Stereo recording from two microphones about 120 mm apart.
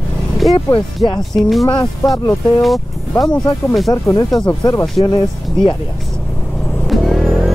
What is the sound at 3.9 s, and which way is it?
Speech, 25° left (ahead or behind).